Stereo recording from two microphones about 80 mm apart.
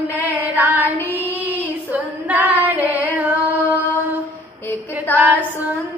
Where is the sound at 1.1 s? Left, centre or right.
Right.